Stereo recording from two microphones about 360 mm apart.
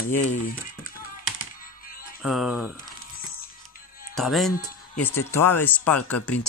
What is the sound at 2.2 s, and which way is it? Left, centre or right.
Speech, centre.